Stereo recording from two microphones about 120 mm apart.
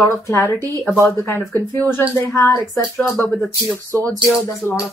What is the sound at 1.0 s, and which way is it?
Speech, 20° left (ahead or behind).